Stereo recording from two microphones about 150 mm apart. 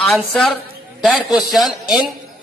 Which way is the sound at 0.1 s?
Centre (ahead or behind).